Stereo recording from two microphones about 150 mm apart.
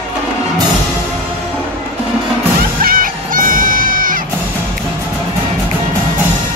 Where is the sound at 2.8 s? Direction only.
70° right (ahead or behind).